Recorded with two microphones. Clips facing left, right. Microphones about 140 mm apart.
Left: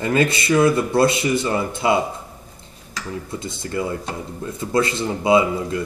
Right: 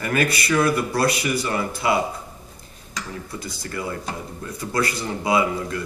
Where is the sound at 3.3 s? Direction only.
25° left (ahead or behind).